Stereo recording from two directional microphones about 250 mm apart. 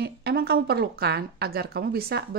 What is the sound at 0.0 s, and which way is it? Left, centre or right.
Speech, right.